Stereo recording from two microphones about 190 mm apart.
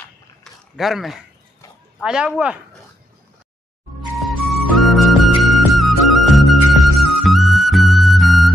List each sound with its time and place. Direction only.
0.4 s a sound: centre (ahead or behind)
2.0 s speech: 5° right (ahead or behind)
4.2 s music: centre (ahead or behind)